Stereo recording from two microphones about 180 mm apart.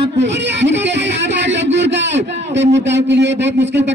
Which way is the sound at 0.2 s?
75° right (ahead or behind).